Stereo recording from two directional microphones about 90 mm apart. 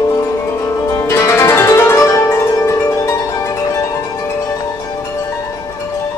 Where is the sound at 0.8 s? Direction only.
30° left (ahead or behind).